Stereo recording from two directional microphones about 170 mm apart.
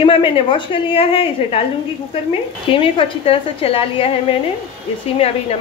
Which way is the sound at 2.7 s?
30° left (ahead or behind).